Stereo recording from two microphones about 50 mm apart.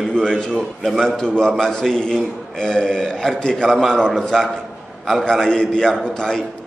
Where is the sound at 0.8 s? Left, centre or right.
Centre.